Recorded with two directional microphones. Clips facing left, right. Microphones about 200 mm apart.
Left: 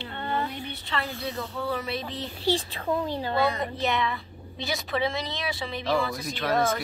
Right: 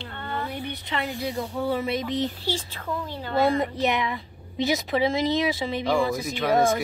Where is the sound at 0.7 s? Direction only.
20° right (ahead or behind).